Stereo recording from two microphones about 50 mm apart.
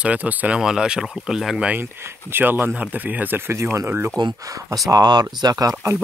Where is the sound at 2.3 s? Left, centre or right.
Right.